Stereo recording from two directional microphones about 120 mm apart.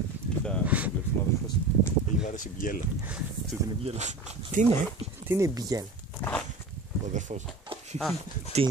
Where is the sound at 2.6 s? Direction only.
90° left.